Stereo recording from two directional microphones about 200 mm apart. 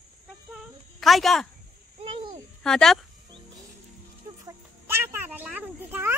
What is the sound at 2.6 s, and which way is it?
Speech, 5° left (ahead or behind).